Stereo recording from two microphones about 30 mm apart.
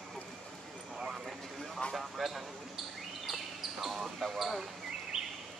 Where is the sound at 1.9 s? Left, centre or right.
Centre.